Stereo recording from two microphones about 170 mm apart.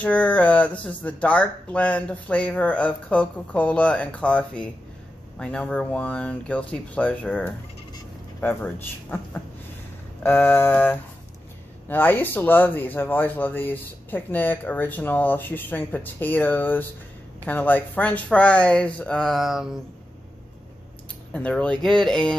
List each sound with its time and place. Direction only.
0.0 s speech: 10° left (ahead or behind)
21.3 s speech: 5° left (ahead or behind)